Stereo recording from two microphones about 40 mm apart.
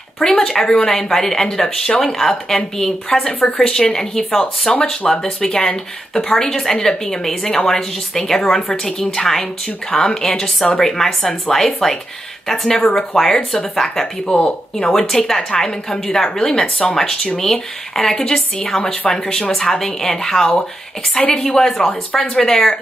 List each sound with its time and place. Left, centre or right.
0.4 s speech: centre
3.4 s speech: left
4.4 s speech: left
4.8 s speech: centre
14.3 s speech: left
14.9 s speech: centre